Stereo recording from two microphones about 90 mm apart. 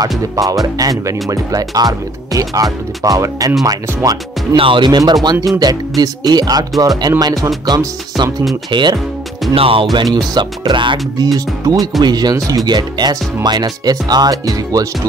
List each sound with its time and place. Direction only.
0.0 s speech: 40° right (ahead or behind)
4.6 s speech: 70° right (ahead or behind); by 8.3 s 50° right (ahead or behind)
8.6 s speech: 60° right (ahead or behind)
9.5 s speech: 85° right
10.3 s speech: 60° right (ahead or behind)
11.3 s speech: 45° right (ahead or behind)